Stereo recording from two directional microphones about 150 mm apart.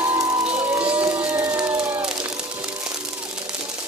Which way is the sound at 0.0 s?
20° right (ahead or behind).